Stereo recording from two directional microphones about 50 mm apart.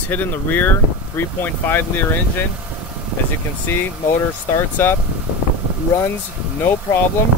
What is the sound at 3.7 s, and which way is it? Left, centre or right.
Speech, left.